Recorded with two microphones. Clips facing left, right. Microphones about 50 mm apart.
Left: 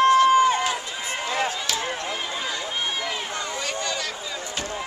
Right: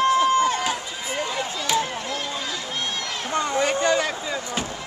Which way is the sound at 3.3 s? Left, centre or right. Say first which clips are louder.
Right 7 dB; right.